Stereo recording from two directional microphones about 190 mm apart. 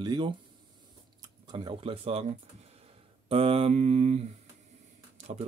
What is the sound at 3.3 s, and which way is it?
Mantra, 30° right (ahead or behind).